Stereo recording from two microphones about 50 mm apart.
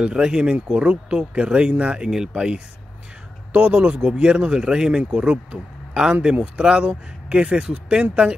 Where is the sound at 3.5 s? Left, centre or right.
Right.